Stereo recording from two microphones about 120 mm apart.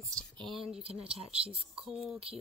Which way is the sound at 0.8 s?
55° right (ahead or behind).